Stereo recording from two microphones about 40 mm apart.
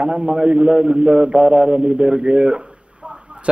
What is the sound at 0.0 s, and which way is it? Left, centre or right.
A man's voice, right.